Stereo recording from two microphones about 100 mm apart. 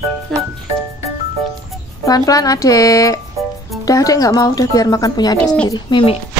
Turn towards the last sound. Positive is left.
turn(degrees=50)  # may be behind; listen again after turning